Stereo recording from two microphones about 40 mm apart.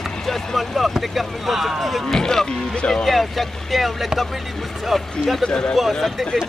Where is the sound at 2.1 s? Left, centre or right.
Centre.